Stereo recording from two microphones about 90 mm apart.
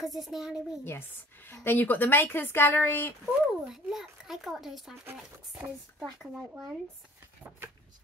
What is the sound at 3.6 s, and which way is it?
A child's voice, 5° right (ahead or behind).